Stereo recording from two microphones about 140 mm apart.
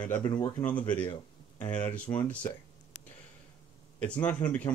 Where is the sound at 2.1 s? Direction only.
20° left (ahead or behind).